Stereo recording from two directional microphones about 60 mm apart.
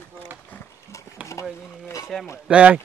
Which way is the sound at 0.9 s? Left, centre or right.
Left.